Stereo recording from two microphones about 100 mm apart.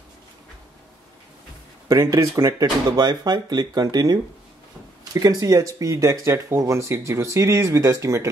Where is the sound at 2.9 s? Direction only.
45° right (ahead or behind).